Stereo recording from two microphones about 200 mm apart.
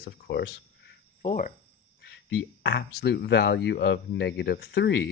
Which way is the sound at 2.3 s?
55° left (ahead or behind).